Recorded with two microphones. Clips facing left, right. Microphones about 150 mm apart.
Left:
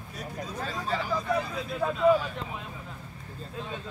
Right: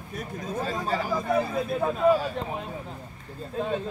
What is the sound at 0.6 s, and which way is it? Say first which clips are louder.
Speech: right 2 dB; 40° right (ahead or behind).